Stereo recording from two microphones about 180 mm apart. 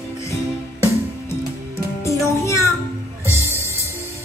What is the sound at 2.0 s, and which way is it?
Music, 15° left (ahead or behind).